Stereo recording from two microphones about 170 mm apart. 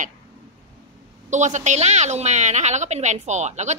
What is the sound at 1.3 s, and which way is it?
A woman's voice, 45° right (ahead or behind).